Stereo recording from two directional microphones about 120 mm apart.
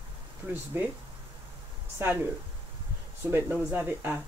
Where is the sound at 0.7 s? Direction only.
20° right (ahead or behind).